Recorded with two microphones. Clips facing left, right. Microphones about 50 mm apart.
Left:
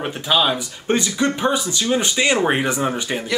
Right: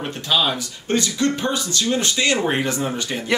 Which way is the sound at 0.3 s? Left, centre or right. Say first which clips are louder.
Left 2 dB; centre.